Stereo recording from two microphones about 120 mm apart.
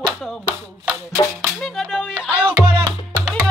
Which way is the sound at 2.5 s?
50° right (ahead or behind).